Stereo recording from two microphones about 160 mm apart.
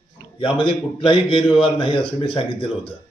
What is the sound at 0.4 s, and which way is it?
A man's voice, 35° left (ahead or behind).